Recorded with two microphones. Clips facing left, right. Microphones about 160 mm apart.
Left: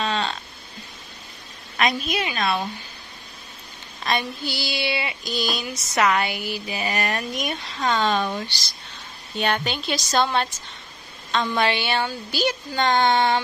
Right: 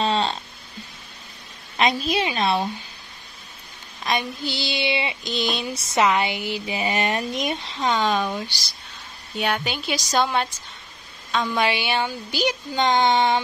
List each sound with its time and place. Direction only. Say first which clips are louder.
0.0 s a sound: right 3 dB; 30° right (ahead or behind)
1.8 s speech: right 2 dB; 30° right (ahead or behind)
4.0 s a woman's voice: even; 15° right (ahead or behind)